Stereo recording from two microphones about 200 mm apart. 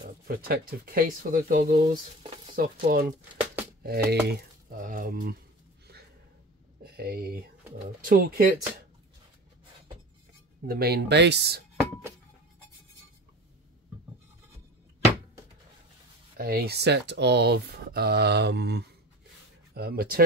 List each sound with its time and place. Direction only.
0.0 s speech: 45° right (ahead or behind)
6.8 s speech: 50° right (ahead or behind)
10.7 s speech: 50° right (ahead or behind)
16.3 s speech: 50° right (ahead or behind)